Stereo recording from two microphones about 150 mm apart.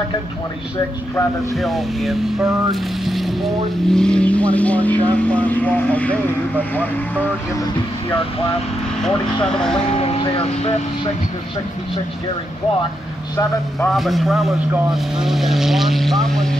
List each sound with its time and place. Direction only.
1.5 s speech: centre (ahead or behind)
7.6 s speech: 35° left (ahead or behind)
9.0 s speech: 5° left (ahead or behind)
9.9 s speech: 40° left (ahead or behind)
13.7 s speech: centre (ahead or behind)